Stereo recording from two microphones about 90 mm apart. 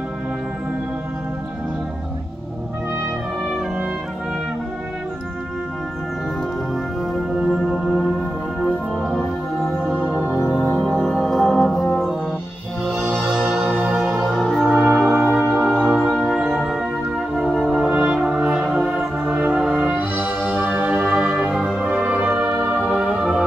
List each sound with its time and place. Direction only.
7.3 s music: 5° right (ahead or behind)
9.9 s music: 15° right (ahead or behind)
10.6 s music: 5° left (ahead or behind)
13.2 s music: 10° right (ahead or behind)
14.1 s music: centre (ahead or behind)
14.8 s brass instrument: 5° right (ahead or behind)
15.3 s music: centre (ahead or behind)
17.8 s music: 15° right (ahead or behind)